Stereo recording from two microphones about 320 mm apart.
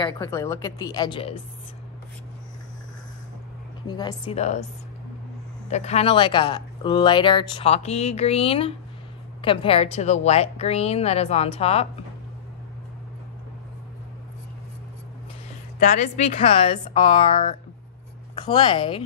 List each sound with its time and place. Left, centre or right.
0.0 s speech: centre
3.8 s speech: centre
5.7 s a woman's voice: left
15.8 s speech: left